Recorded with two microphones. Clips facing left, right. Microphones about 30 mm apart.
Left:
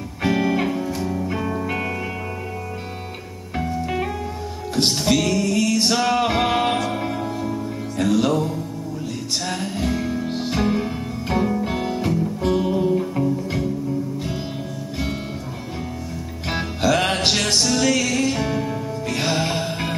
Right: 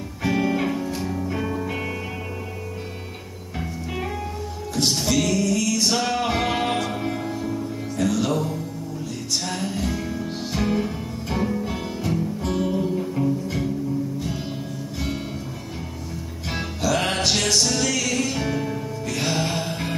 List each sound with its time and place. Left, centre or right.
0.2 s music: left; by 1.7 s centre
5.0 s music: left
5.9 s music: centre
7.1 s music: centre; by 12.1 s left
12.5 s music: centre
16.4 s music: left
19.0 s music: left